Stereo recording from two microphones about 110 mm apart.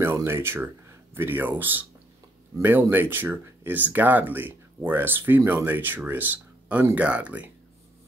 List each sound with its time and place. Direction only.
0.0 s speech: 25° right (ahead or behind)